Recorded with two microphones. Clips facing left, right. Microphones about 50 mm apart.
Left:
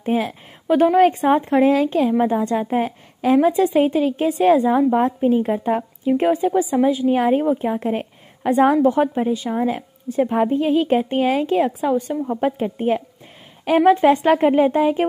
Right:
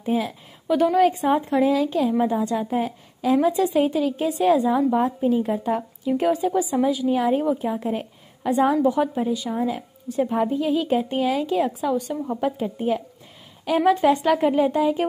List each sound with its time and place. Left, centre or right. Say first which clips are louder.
0.0 s a woman's voice: left 3 dB; left